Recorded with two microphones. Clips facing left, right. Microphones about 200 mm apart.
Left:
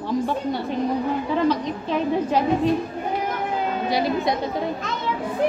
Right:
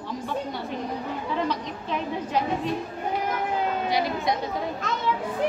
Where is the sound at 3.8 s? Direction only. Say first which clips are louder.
Left 4 dB; 30° left (ahead or behind).